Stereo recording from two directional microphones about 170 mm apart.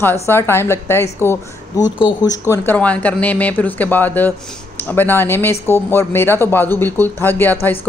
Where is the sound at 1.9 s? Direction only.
25° left (ahead or behind).